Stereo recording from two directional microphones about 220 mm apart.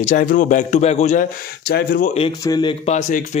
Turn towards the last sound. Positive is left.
turn(degrees=35)  # may be behind; listen again after turning